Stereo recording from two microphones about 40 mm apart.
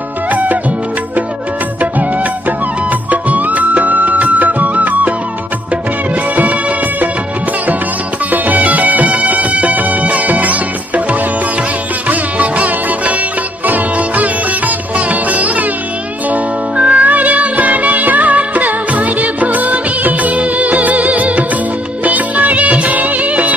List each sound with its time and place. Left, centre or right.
0.3 s music: right
3.1 s music: right
8.3 s music: right
12.1 s music: right
22.0 s music of bollywood: right